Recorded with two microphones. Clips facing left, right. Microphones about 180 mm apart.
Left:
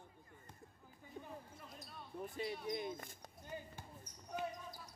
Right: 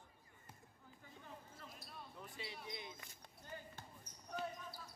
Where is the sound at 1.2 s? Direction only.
40° left (ahead or behind).